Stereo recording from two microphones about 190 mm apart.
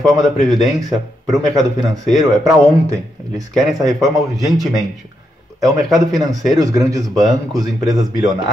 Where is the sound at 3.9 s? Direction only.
Centre (ahead or behind).